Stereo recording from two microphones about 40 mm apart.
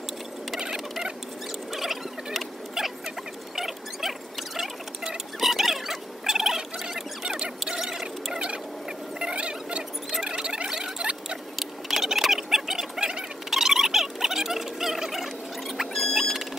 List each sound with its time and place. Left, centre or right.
1.7 s rodents: centre
3.5 s a sound: centre
9.2 s a sound: right
10.7 s rodents: centre
11.5 s bird: centre
13.5 s rodents: centre
15.9 s music: centre
16.2 s vehicle: centre